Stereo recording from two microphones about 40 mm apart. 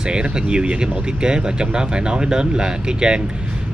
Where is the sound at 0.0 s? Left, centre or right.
Right.